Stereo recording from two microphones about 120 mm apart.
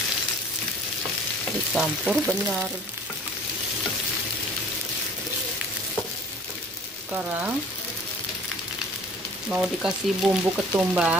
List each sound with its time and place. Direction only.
1.7 s frying: 5° right (ahead or behind)
7.1 s speech: 10° right (ahead or behind)
9.5 s speech: 5° right (ahead or behind)